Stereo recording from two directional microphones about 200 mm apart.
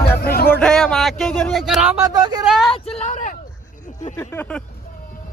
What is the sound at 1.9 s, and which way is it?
Speech, 20° right (ahead or behind).